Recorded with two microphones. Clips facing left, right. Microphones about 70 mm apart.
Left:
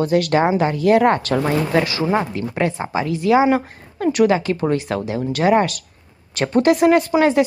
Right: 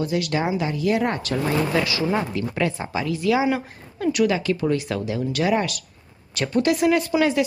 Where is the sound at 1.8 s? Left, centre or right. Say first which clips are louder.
Left 4 dB; left.